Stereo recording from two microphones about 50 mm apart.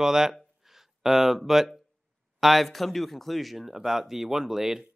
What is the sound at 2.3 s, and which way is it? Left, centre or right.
Speech, centre.